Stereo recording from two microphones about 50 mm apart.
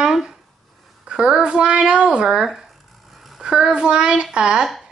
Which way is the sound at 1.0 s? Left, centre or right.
Centre.